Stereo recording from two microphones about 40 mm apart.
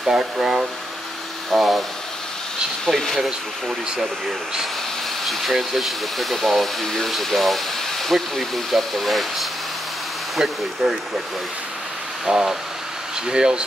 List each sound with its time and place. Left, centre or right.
0.0 s speech: centre
1.5 s speech: centre
2.8 s speech: centre
3.2 s speech: centre
5.2 s speech: centre
12.3 s speech: centre